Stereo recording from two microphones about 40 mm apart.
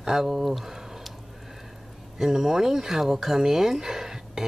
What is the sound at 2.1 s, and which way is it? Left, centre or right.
Speech, centre.